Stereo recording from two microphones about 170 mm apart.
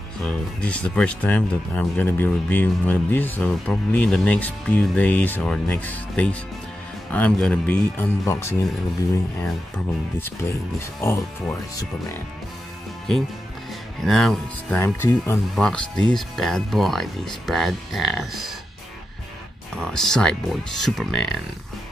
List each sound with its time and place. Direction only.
0.2 s speech: 5° left (ahead or behind)
11.0 s speech: 15° left (ahead or behind)
14.0 s speech: centre (ahead or behind)
14.8 s speech: 15° left (ahead or behind)
19.8 s speech: 5° left (ahead or behind)